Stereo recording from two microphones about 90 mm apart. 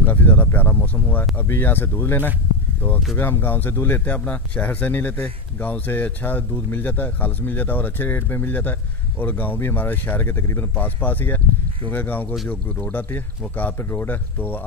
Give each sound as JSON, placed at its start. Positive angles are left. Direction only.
{"t": 0.0, "sound": "speech", "side_deg": 20}